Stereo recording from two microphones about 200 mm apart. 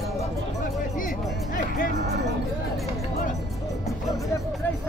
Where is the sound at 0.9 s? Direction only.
45° left (ahead or behind).